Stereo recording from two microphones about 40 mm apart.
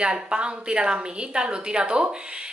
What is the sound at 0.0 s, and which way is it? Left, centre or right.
A woman's voice, right.